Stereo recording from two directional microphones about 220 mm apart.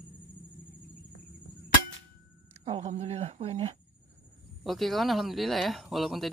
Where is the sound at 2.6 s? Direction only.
25° right (ahead or behind).